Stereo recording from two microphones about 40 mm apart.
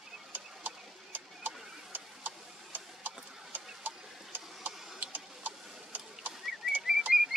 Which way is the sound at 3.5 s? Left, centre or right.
Right.